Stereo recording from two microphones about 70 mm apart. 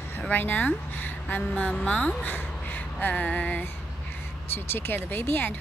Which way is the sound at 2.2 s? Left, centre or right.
Left.